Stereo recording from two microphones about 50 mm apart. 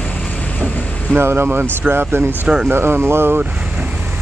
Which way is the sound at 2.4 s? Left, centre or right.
Centre.